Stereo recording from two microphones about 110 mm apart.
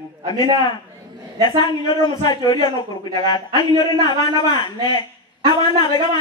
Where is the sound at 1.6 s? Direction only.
40° left (ahead or behind).